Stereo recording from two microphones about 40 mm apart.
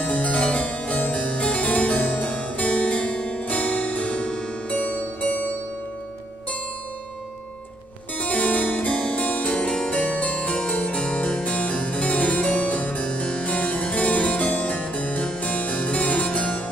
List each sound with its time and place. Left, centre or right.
0.0 s harpsichord: left
8.2 s harpsichord: left
9.5 s harpsichord: left
9.8 s music: left
10.8 s harpsichord: left